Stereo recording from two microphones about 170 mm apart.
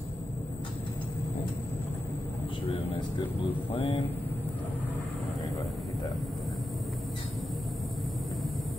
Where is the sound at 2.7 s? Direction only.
35° left (ahead or behind).